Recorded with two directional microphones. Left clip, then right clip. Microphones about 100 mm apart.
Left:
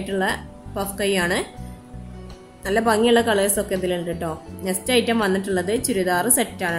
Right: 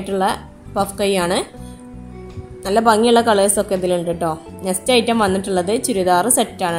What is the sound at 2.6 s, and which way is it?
A woman's voice, 35° right (ahead or behind).